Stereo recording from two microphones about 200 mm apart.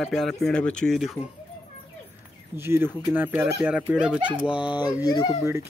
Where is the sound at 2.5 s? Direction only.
10° right (ahead or behind).